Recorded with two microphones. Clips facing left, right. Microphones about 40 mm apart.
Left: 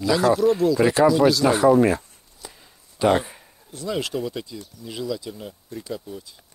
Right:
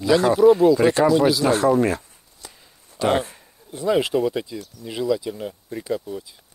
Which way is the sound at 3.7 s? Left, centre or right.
Right.